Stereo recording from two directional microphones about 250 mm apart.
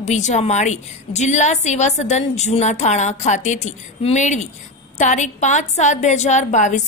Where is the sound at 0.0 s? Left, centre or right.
Left.